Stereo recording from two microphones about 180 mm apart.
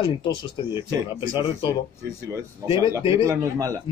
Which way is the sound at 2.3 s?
15° right (ahead or behind).